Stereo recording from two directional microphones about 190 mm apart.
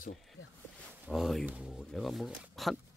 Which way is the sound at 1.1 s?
Centre (ahead or behind).